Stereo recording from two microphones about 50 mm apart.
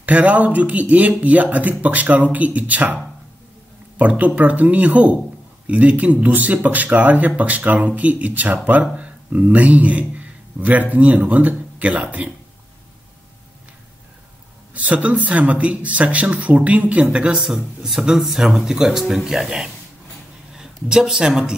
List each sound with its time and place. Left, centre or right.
0.0 s speech: right
4.0 s speech: right
14.7 s speech: right
18.0 s speech: centre